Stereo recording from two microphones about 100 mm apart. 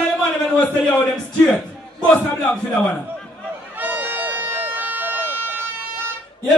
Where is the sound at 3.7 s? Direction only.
15° right (ahead or behind).